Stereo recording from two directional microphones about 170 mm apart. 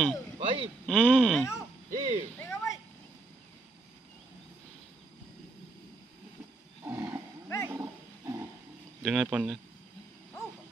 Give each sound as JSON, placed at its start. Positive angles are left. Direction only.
{"t": 0.4, "sound": "a sound", "side_deg": -30}
{"t": 0.8, "sound": "speech", "side_deg": 10}
{"t": 1.9, "sound": "owl", "side_deg": -45}
{"t": 2.3, "sound": "a sound", "side_deg": 15}
{"t": 6.8, "sound": "roaring cats", "side_deg": -10}
{"t": 7.4, "sound": "wild animals", "side_deg": 15}
{"t": 7.7, "sound": "wild animals", "side_deg": -15}
{"t": 9.0, "sound": "speech", "side_deg": -5}